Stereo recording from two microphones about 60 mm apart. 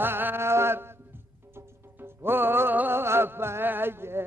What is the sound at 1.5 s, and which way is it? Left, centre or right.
Music, right.